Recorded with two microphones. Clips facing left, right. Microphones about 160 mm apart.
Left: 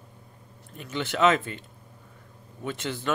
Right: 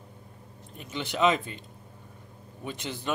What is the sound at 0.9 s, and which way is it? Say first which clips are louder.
Speech: left 2 dB; 15° right (ahead or behind).